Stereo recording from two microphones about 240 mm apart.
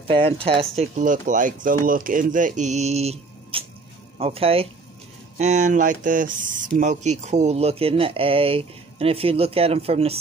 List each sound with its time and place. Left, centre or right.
0.1 s speech: right